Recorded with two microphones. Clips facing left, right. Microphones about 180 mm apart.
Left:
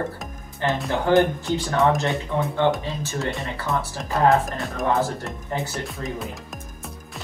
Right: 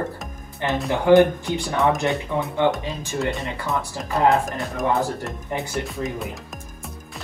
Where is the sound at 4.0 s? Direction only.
Centre (ahead or behind).